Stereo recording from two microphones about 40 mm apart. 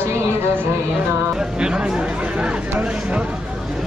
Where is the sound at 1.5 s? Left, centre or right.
Right.